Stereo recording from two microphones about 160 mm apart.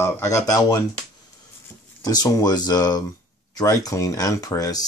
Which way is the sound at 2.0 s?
25° left (ahead or behind).